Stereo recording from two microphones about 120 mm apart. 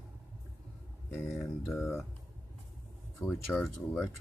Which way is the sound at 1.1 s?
25° left (ahead or behind).